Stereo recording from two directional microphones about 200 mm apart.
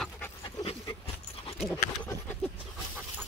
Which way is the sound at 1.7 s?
15° left (ahead or behind).